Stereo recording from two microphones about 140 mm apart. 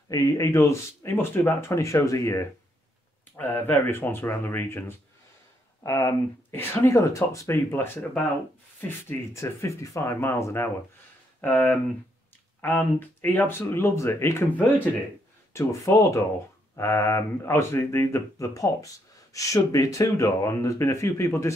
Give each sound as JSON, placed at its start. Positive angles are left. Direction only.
{"t": 0.1, "sound": "speech", "side_deg": 20}